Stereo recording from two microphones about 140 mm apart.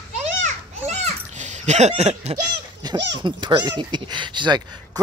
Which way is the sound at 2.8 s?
30° right (ahead or behind).